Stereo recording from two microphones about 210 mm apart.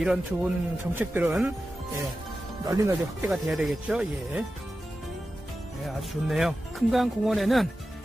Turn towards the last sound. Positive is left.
turn(degrees=0)  # may be behind; listen again after turning